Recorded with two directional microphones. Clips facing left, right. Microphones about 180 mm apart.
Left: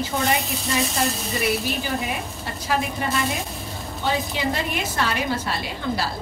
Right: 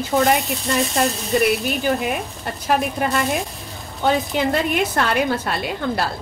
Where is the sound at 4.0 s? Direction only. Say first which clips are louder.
Right 6 dB; 55° right (ahead or behind).